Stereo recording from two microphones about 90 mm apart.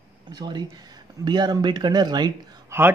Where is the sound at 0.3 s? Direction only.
55° right (ahead or behind).